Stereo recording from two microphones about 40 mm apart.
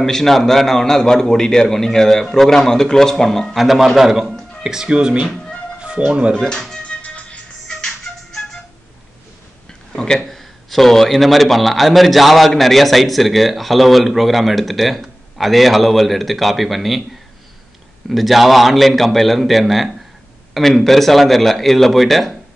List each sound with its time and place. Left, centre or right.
0.0 s a man's voice: centre
3.5 s a man's voice: centre
4.8 s speech: right
6.9 s music: left
9.7 s a sound: centre
10.2 s a man's voice: centre
18.1 s a man's voice: centre